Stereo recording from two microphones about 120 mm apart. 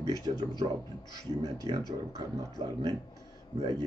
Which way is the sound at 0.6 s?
55° right (ahead or behind).